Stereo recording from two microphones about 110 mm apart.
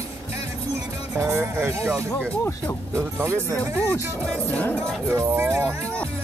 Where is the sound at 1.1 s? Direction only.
25° right (ahead or behind).